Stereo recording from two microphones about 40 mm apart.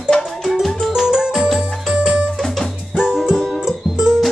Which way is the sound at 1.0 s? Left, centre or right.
Centre.